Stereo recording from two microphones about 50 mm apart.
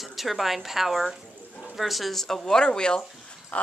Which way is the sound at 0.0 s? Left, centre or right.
Centre.